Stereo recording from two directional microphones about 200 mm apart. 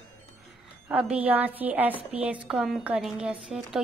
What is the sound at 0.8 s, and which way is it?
A woman's voice, 5° right (ahead or behind).